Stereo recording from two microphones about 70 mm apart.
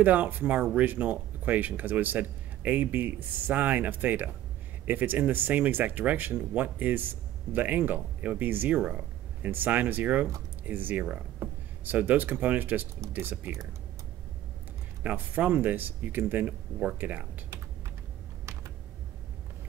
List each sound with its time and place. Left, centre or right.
0.0 s speech: right
15.0 s speech: right